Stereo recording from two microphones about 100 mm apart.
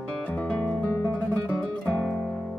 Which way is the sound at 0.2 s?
15° left (ahead or behind).